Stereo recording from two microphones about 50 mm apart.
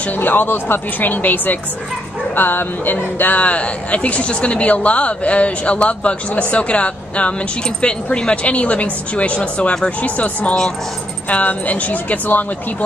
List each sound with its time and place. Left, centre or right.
0.2 s speech: left